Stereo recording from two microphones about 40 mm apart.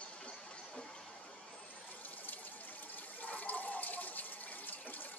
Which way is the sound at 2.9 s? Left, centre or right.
Left.